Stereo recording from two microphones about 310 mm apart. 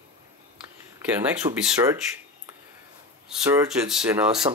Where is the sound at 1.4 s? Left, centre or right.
Centre.